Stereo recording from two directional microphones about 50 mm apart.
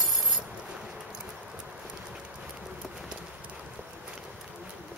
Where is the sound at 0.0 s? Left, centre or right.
Centre.